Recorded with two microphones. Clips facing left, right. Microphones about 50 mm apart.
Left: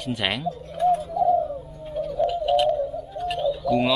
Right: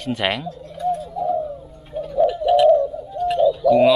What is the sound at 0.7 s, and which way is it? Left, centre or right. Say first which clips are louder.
Bird: left 2 dB; left.